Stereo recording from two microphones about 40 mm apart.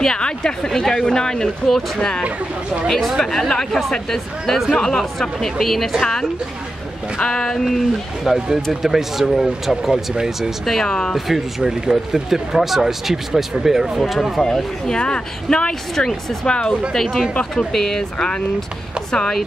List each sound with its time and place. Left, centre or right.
0.0 s a woman's voice: centre
2.2 s speech: right
3.1 s speech: centre
3.3 s speech: centre
7.2 s a woman's voice: left
7.7 s speech: centre
10.6 s speech: centre
10.9 s a woman's voice: left
11.1 s speech: centre
14.4 s a woman's voice: centre
16.9 s speech: centre